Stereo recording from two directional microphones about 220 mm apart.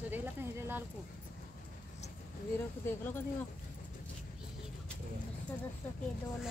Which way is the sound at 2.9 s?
10° left (ahead or behind).